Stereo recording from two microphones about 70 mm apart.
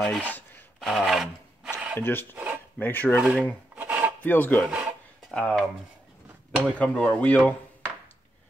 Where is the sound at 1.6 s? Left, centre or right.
Centre.